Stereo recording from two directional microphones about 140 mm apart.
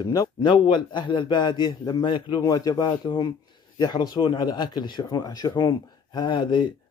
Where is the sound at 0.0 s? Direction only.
30° left (ahead or behind).